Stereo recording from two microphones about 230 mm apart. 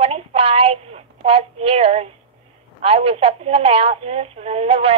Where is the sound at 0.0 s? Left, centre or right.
Right.